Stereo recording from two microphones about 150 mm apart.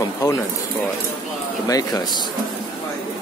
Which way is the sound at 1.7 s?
25° left (ahead or behind).